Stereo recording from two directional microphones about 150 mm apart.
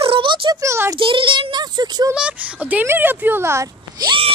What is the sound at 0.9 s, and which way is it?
A child's voice, 35° right (ahead or behind).